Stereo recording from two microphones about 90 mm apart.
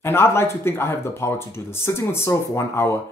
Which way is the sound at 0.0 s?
30° left (ahead or behind).